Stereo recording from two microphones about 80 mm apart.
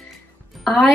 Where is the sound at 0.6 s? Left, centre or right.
Centre.